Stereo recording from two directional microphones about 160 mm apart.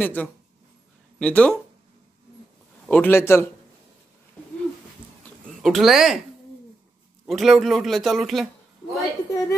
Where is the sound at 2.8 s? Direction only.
10° left (ahead or behind).